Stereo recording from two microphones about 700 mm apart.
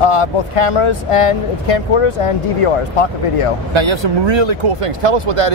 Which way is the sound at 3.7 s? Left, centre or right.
Right.